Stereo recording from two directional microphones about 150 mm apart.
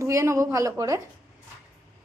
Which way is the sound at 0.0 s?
20° right (ahead or behind).